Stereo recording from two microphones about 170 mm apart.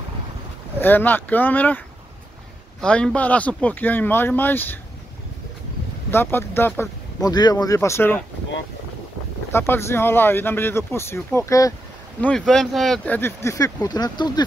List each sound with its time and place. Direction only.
0.7 s speech: 10° left (ahead or behind)
2.8 s speech: 5° left (ahead or behind)
6.0 s speech: 15° left (ahead or behind)
9.5 s speech: 15° left (ahead or behind)
12.2 s speech: 5° left (ahead or behind); by 14.4 s 25° left (ahead or behind)